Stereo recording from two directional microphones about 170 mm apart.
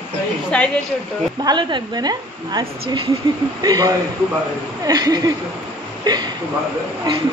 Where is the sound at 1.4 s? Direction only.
25° right (ahead or behind).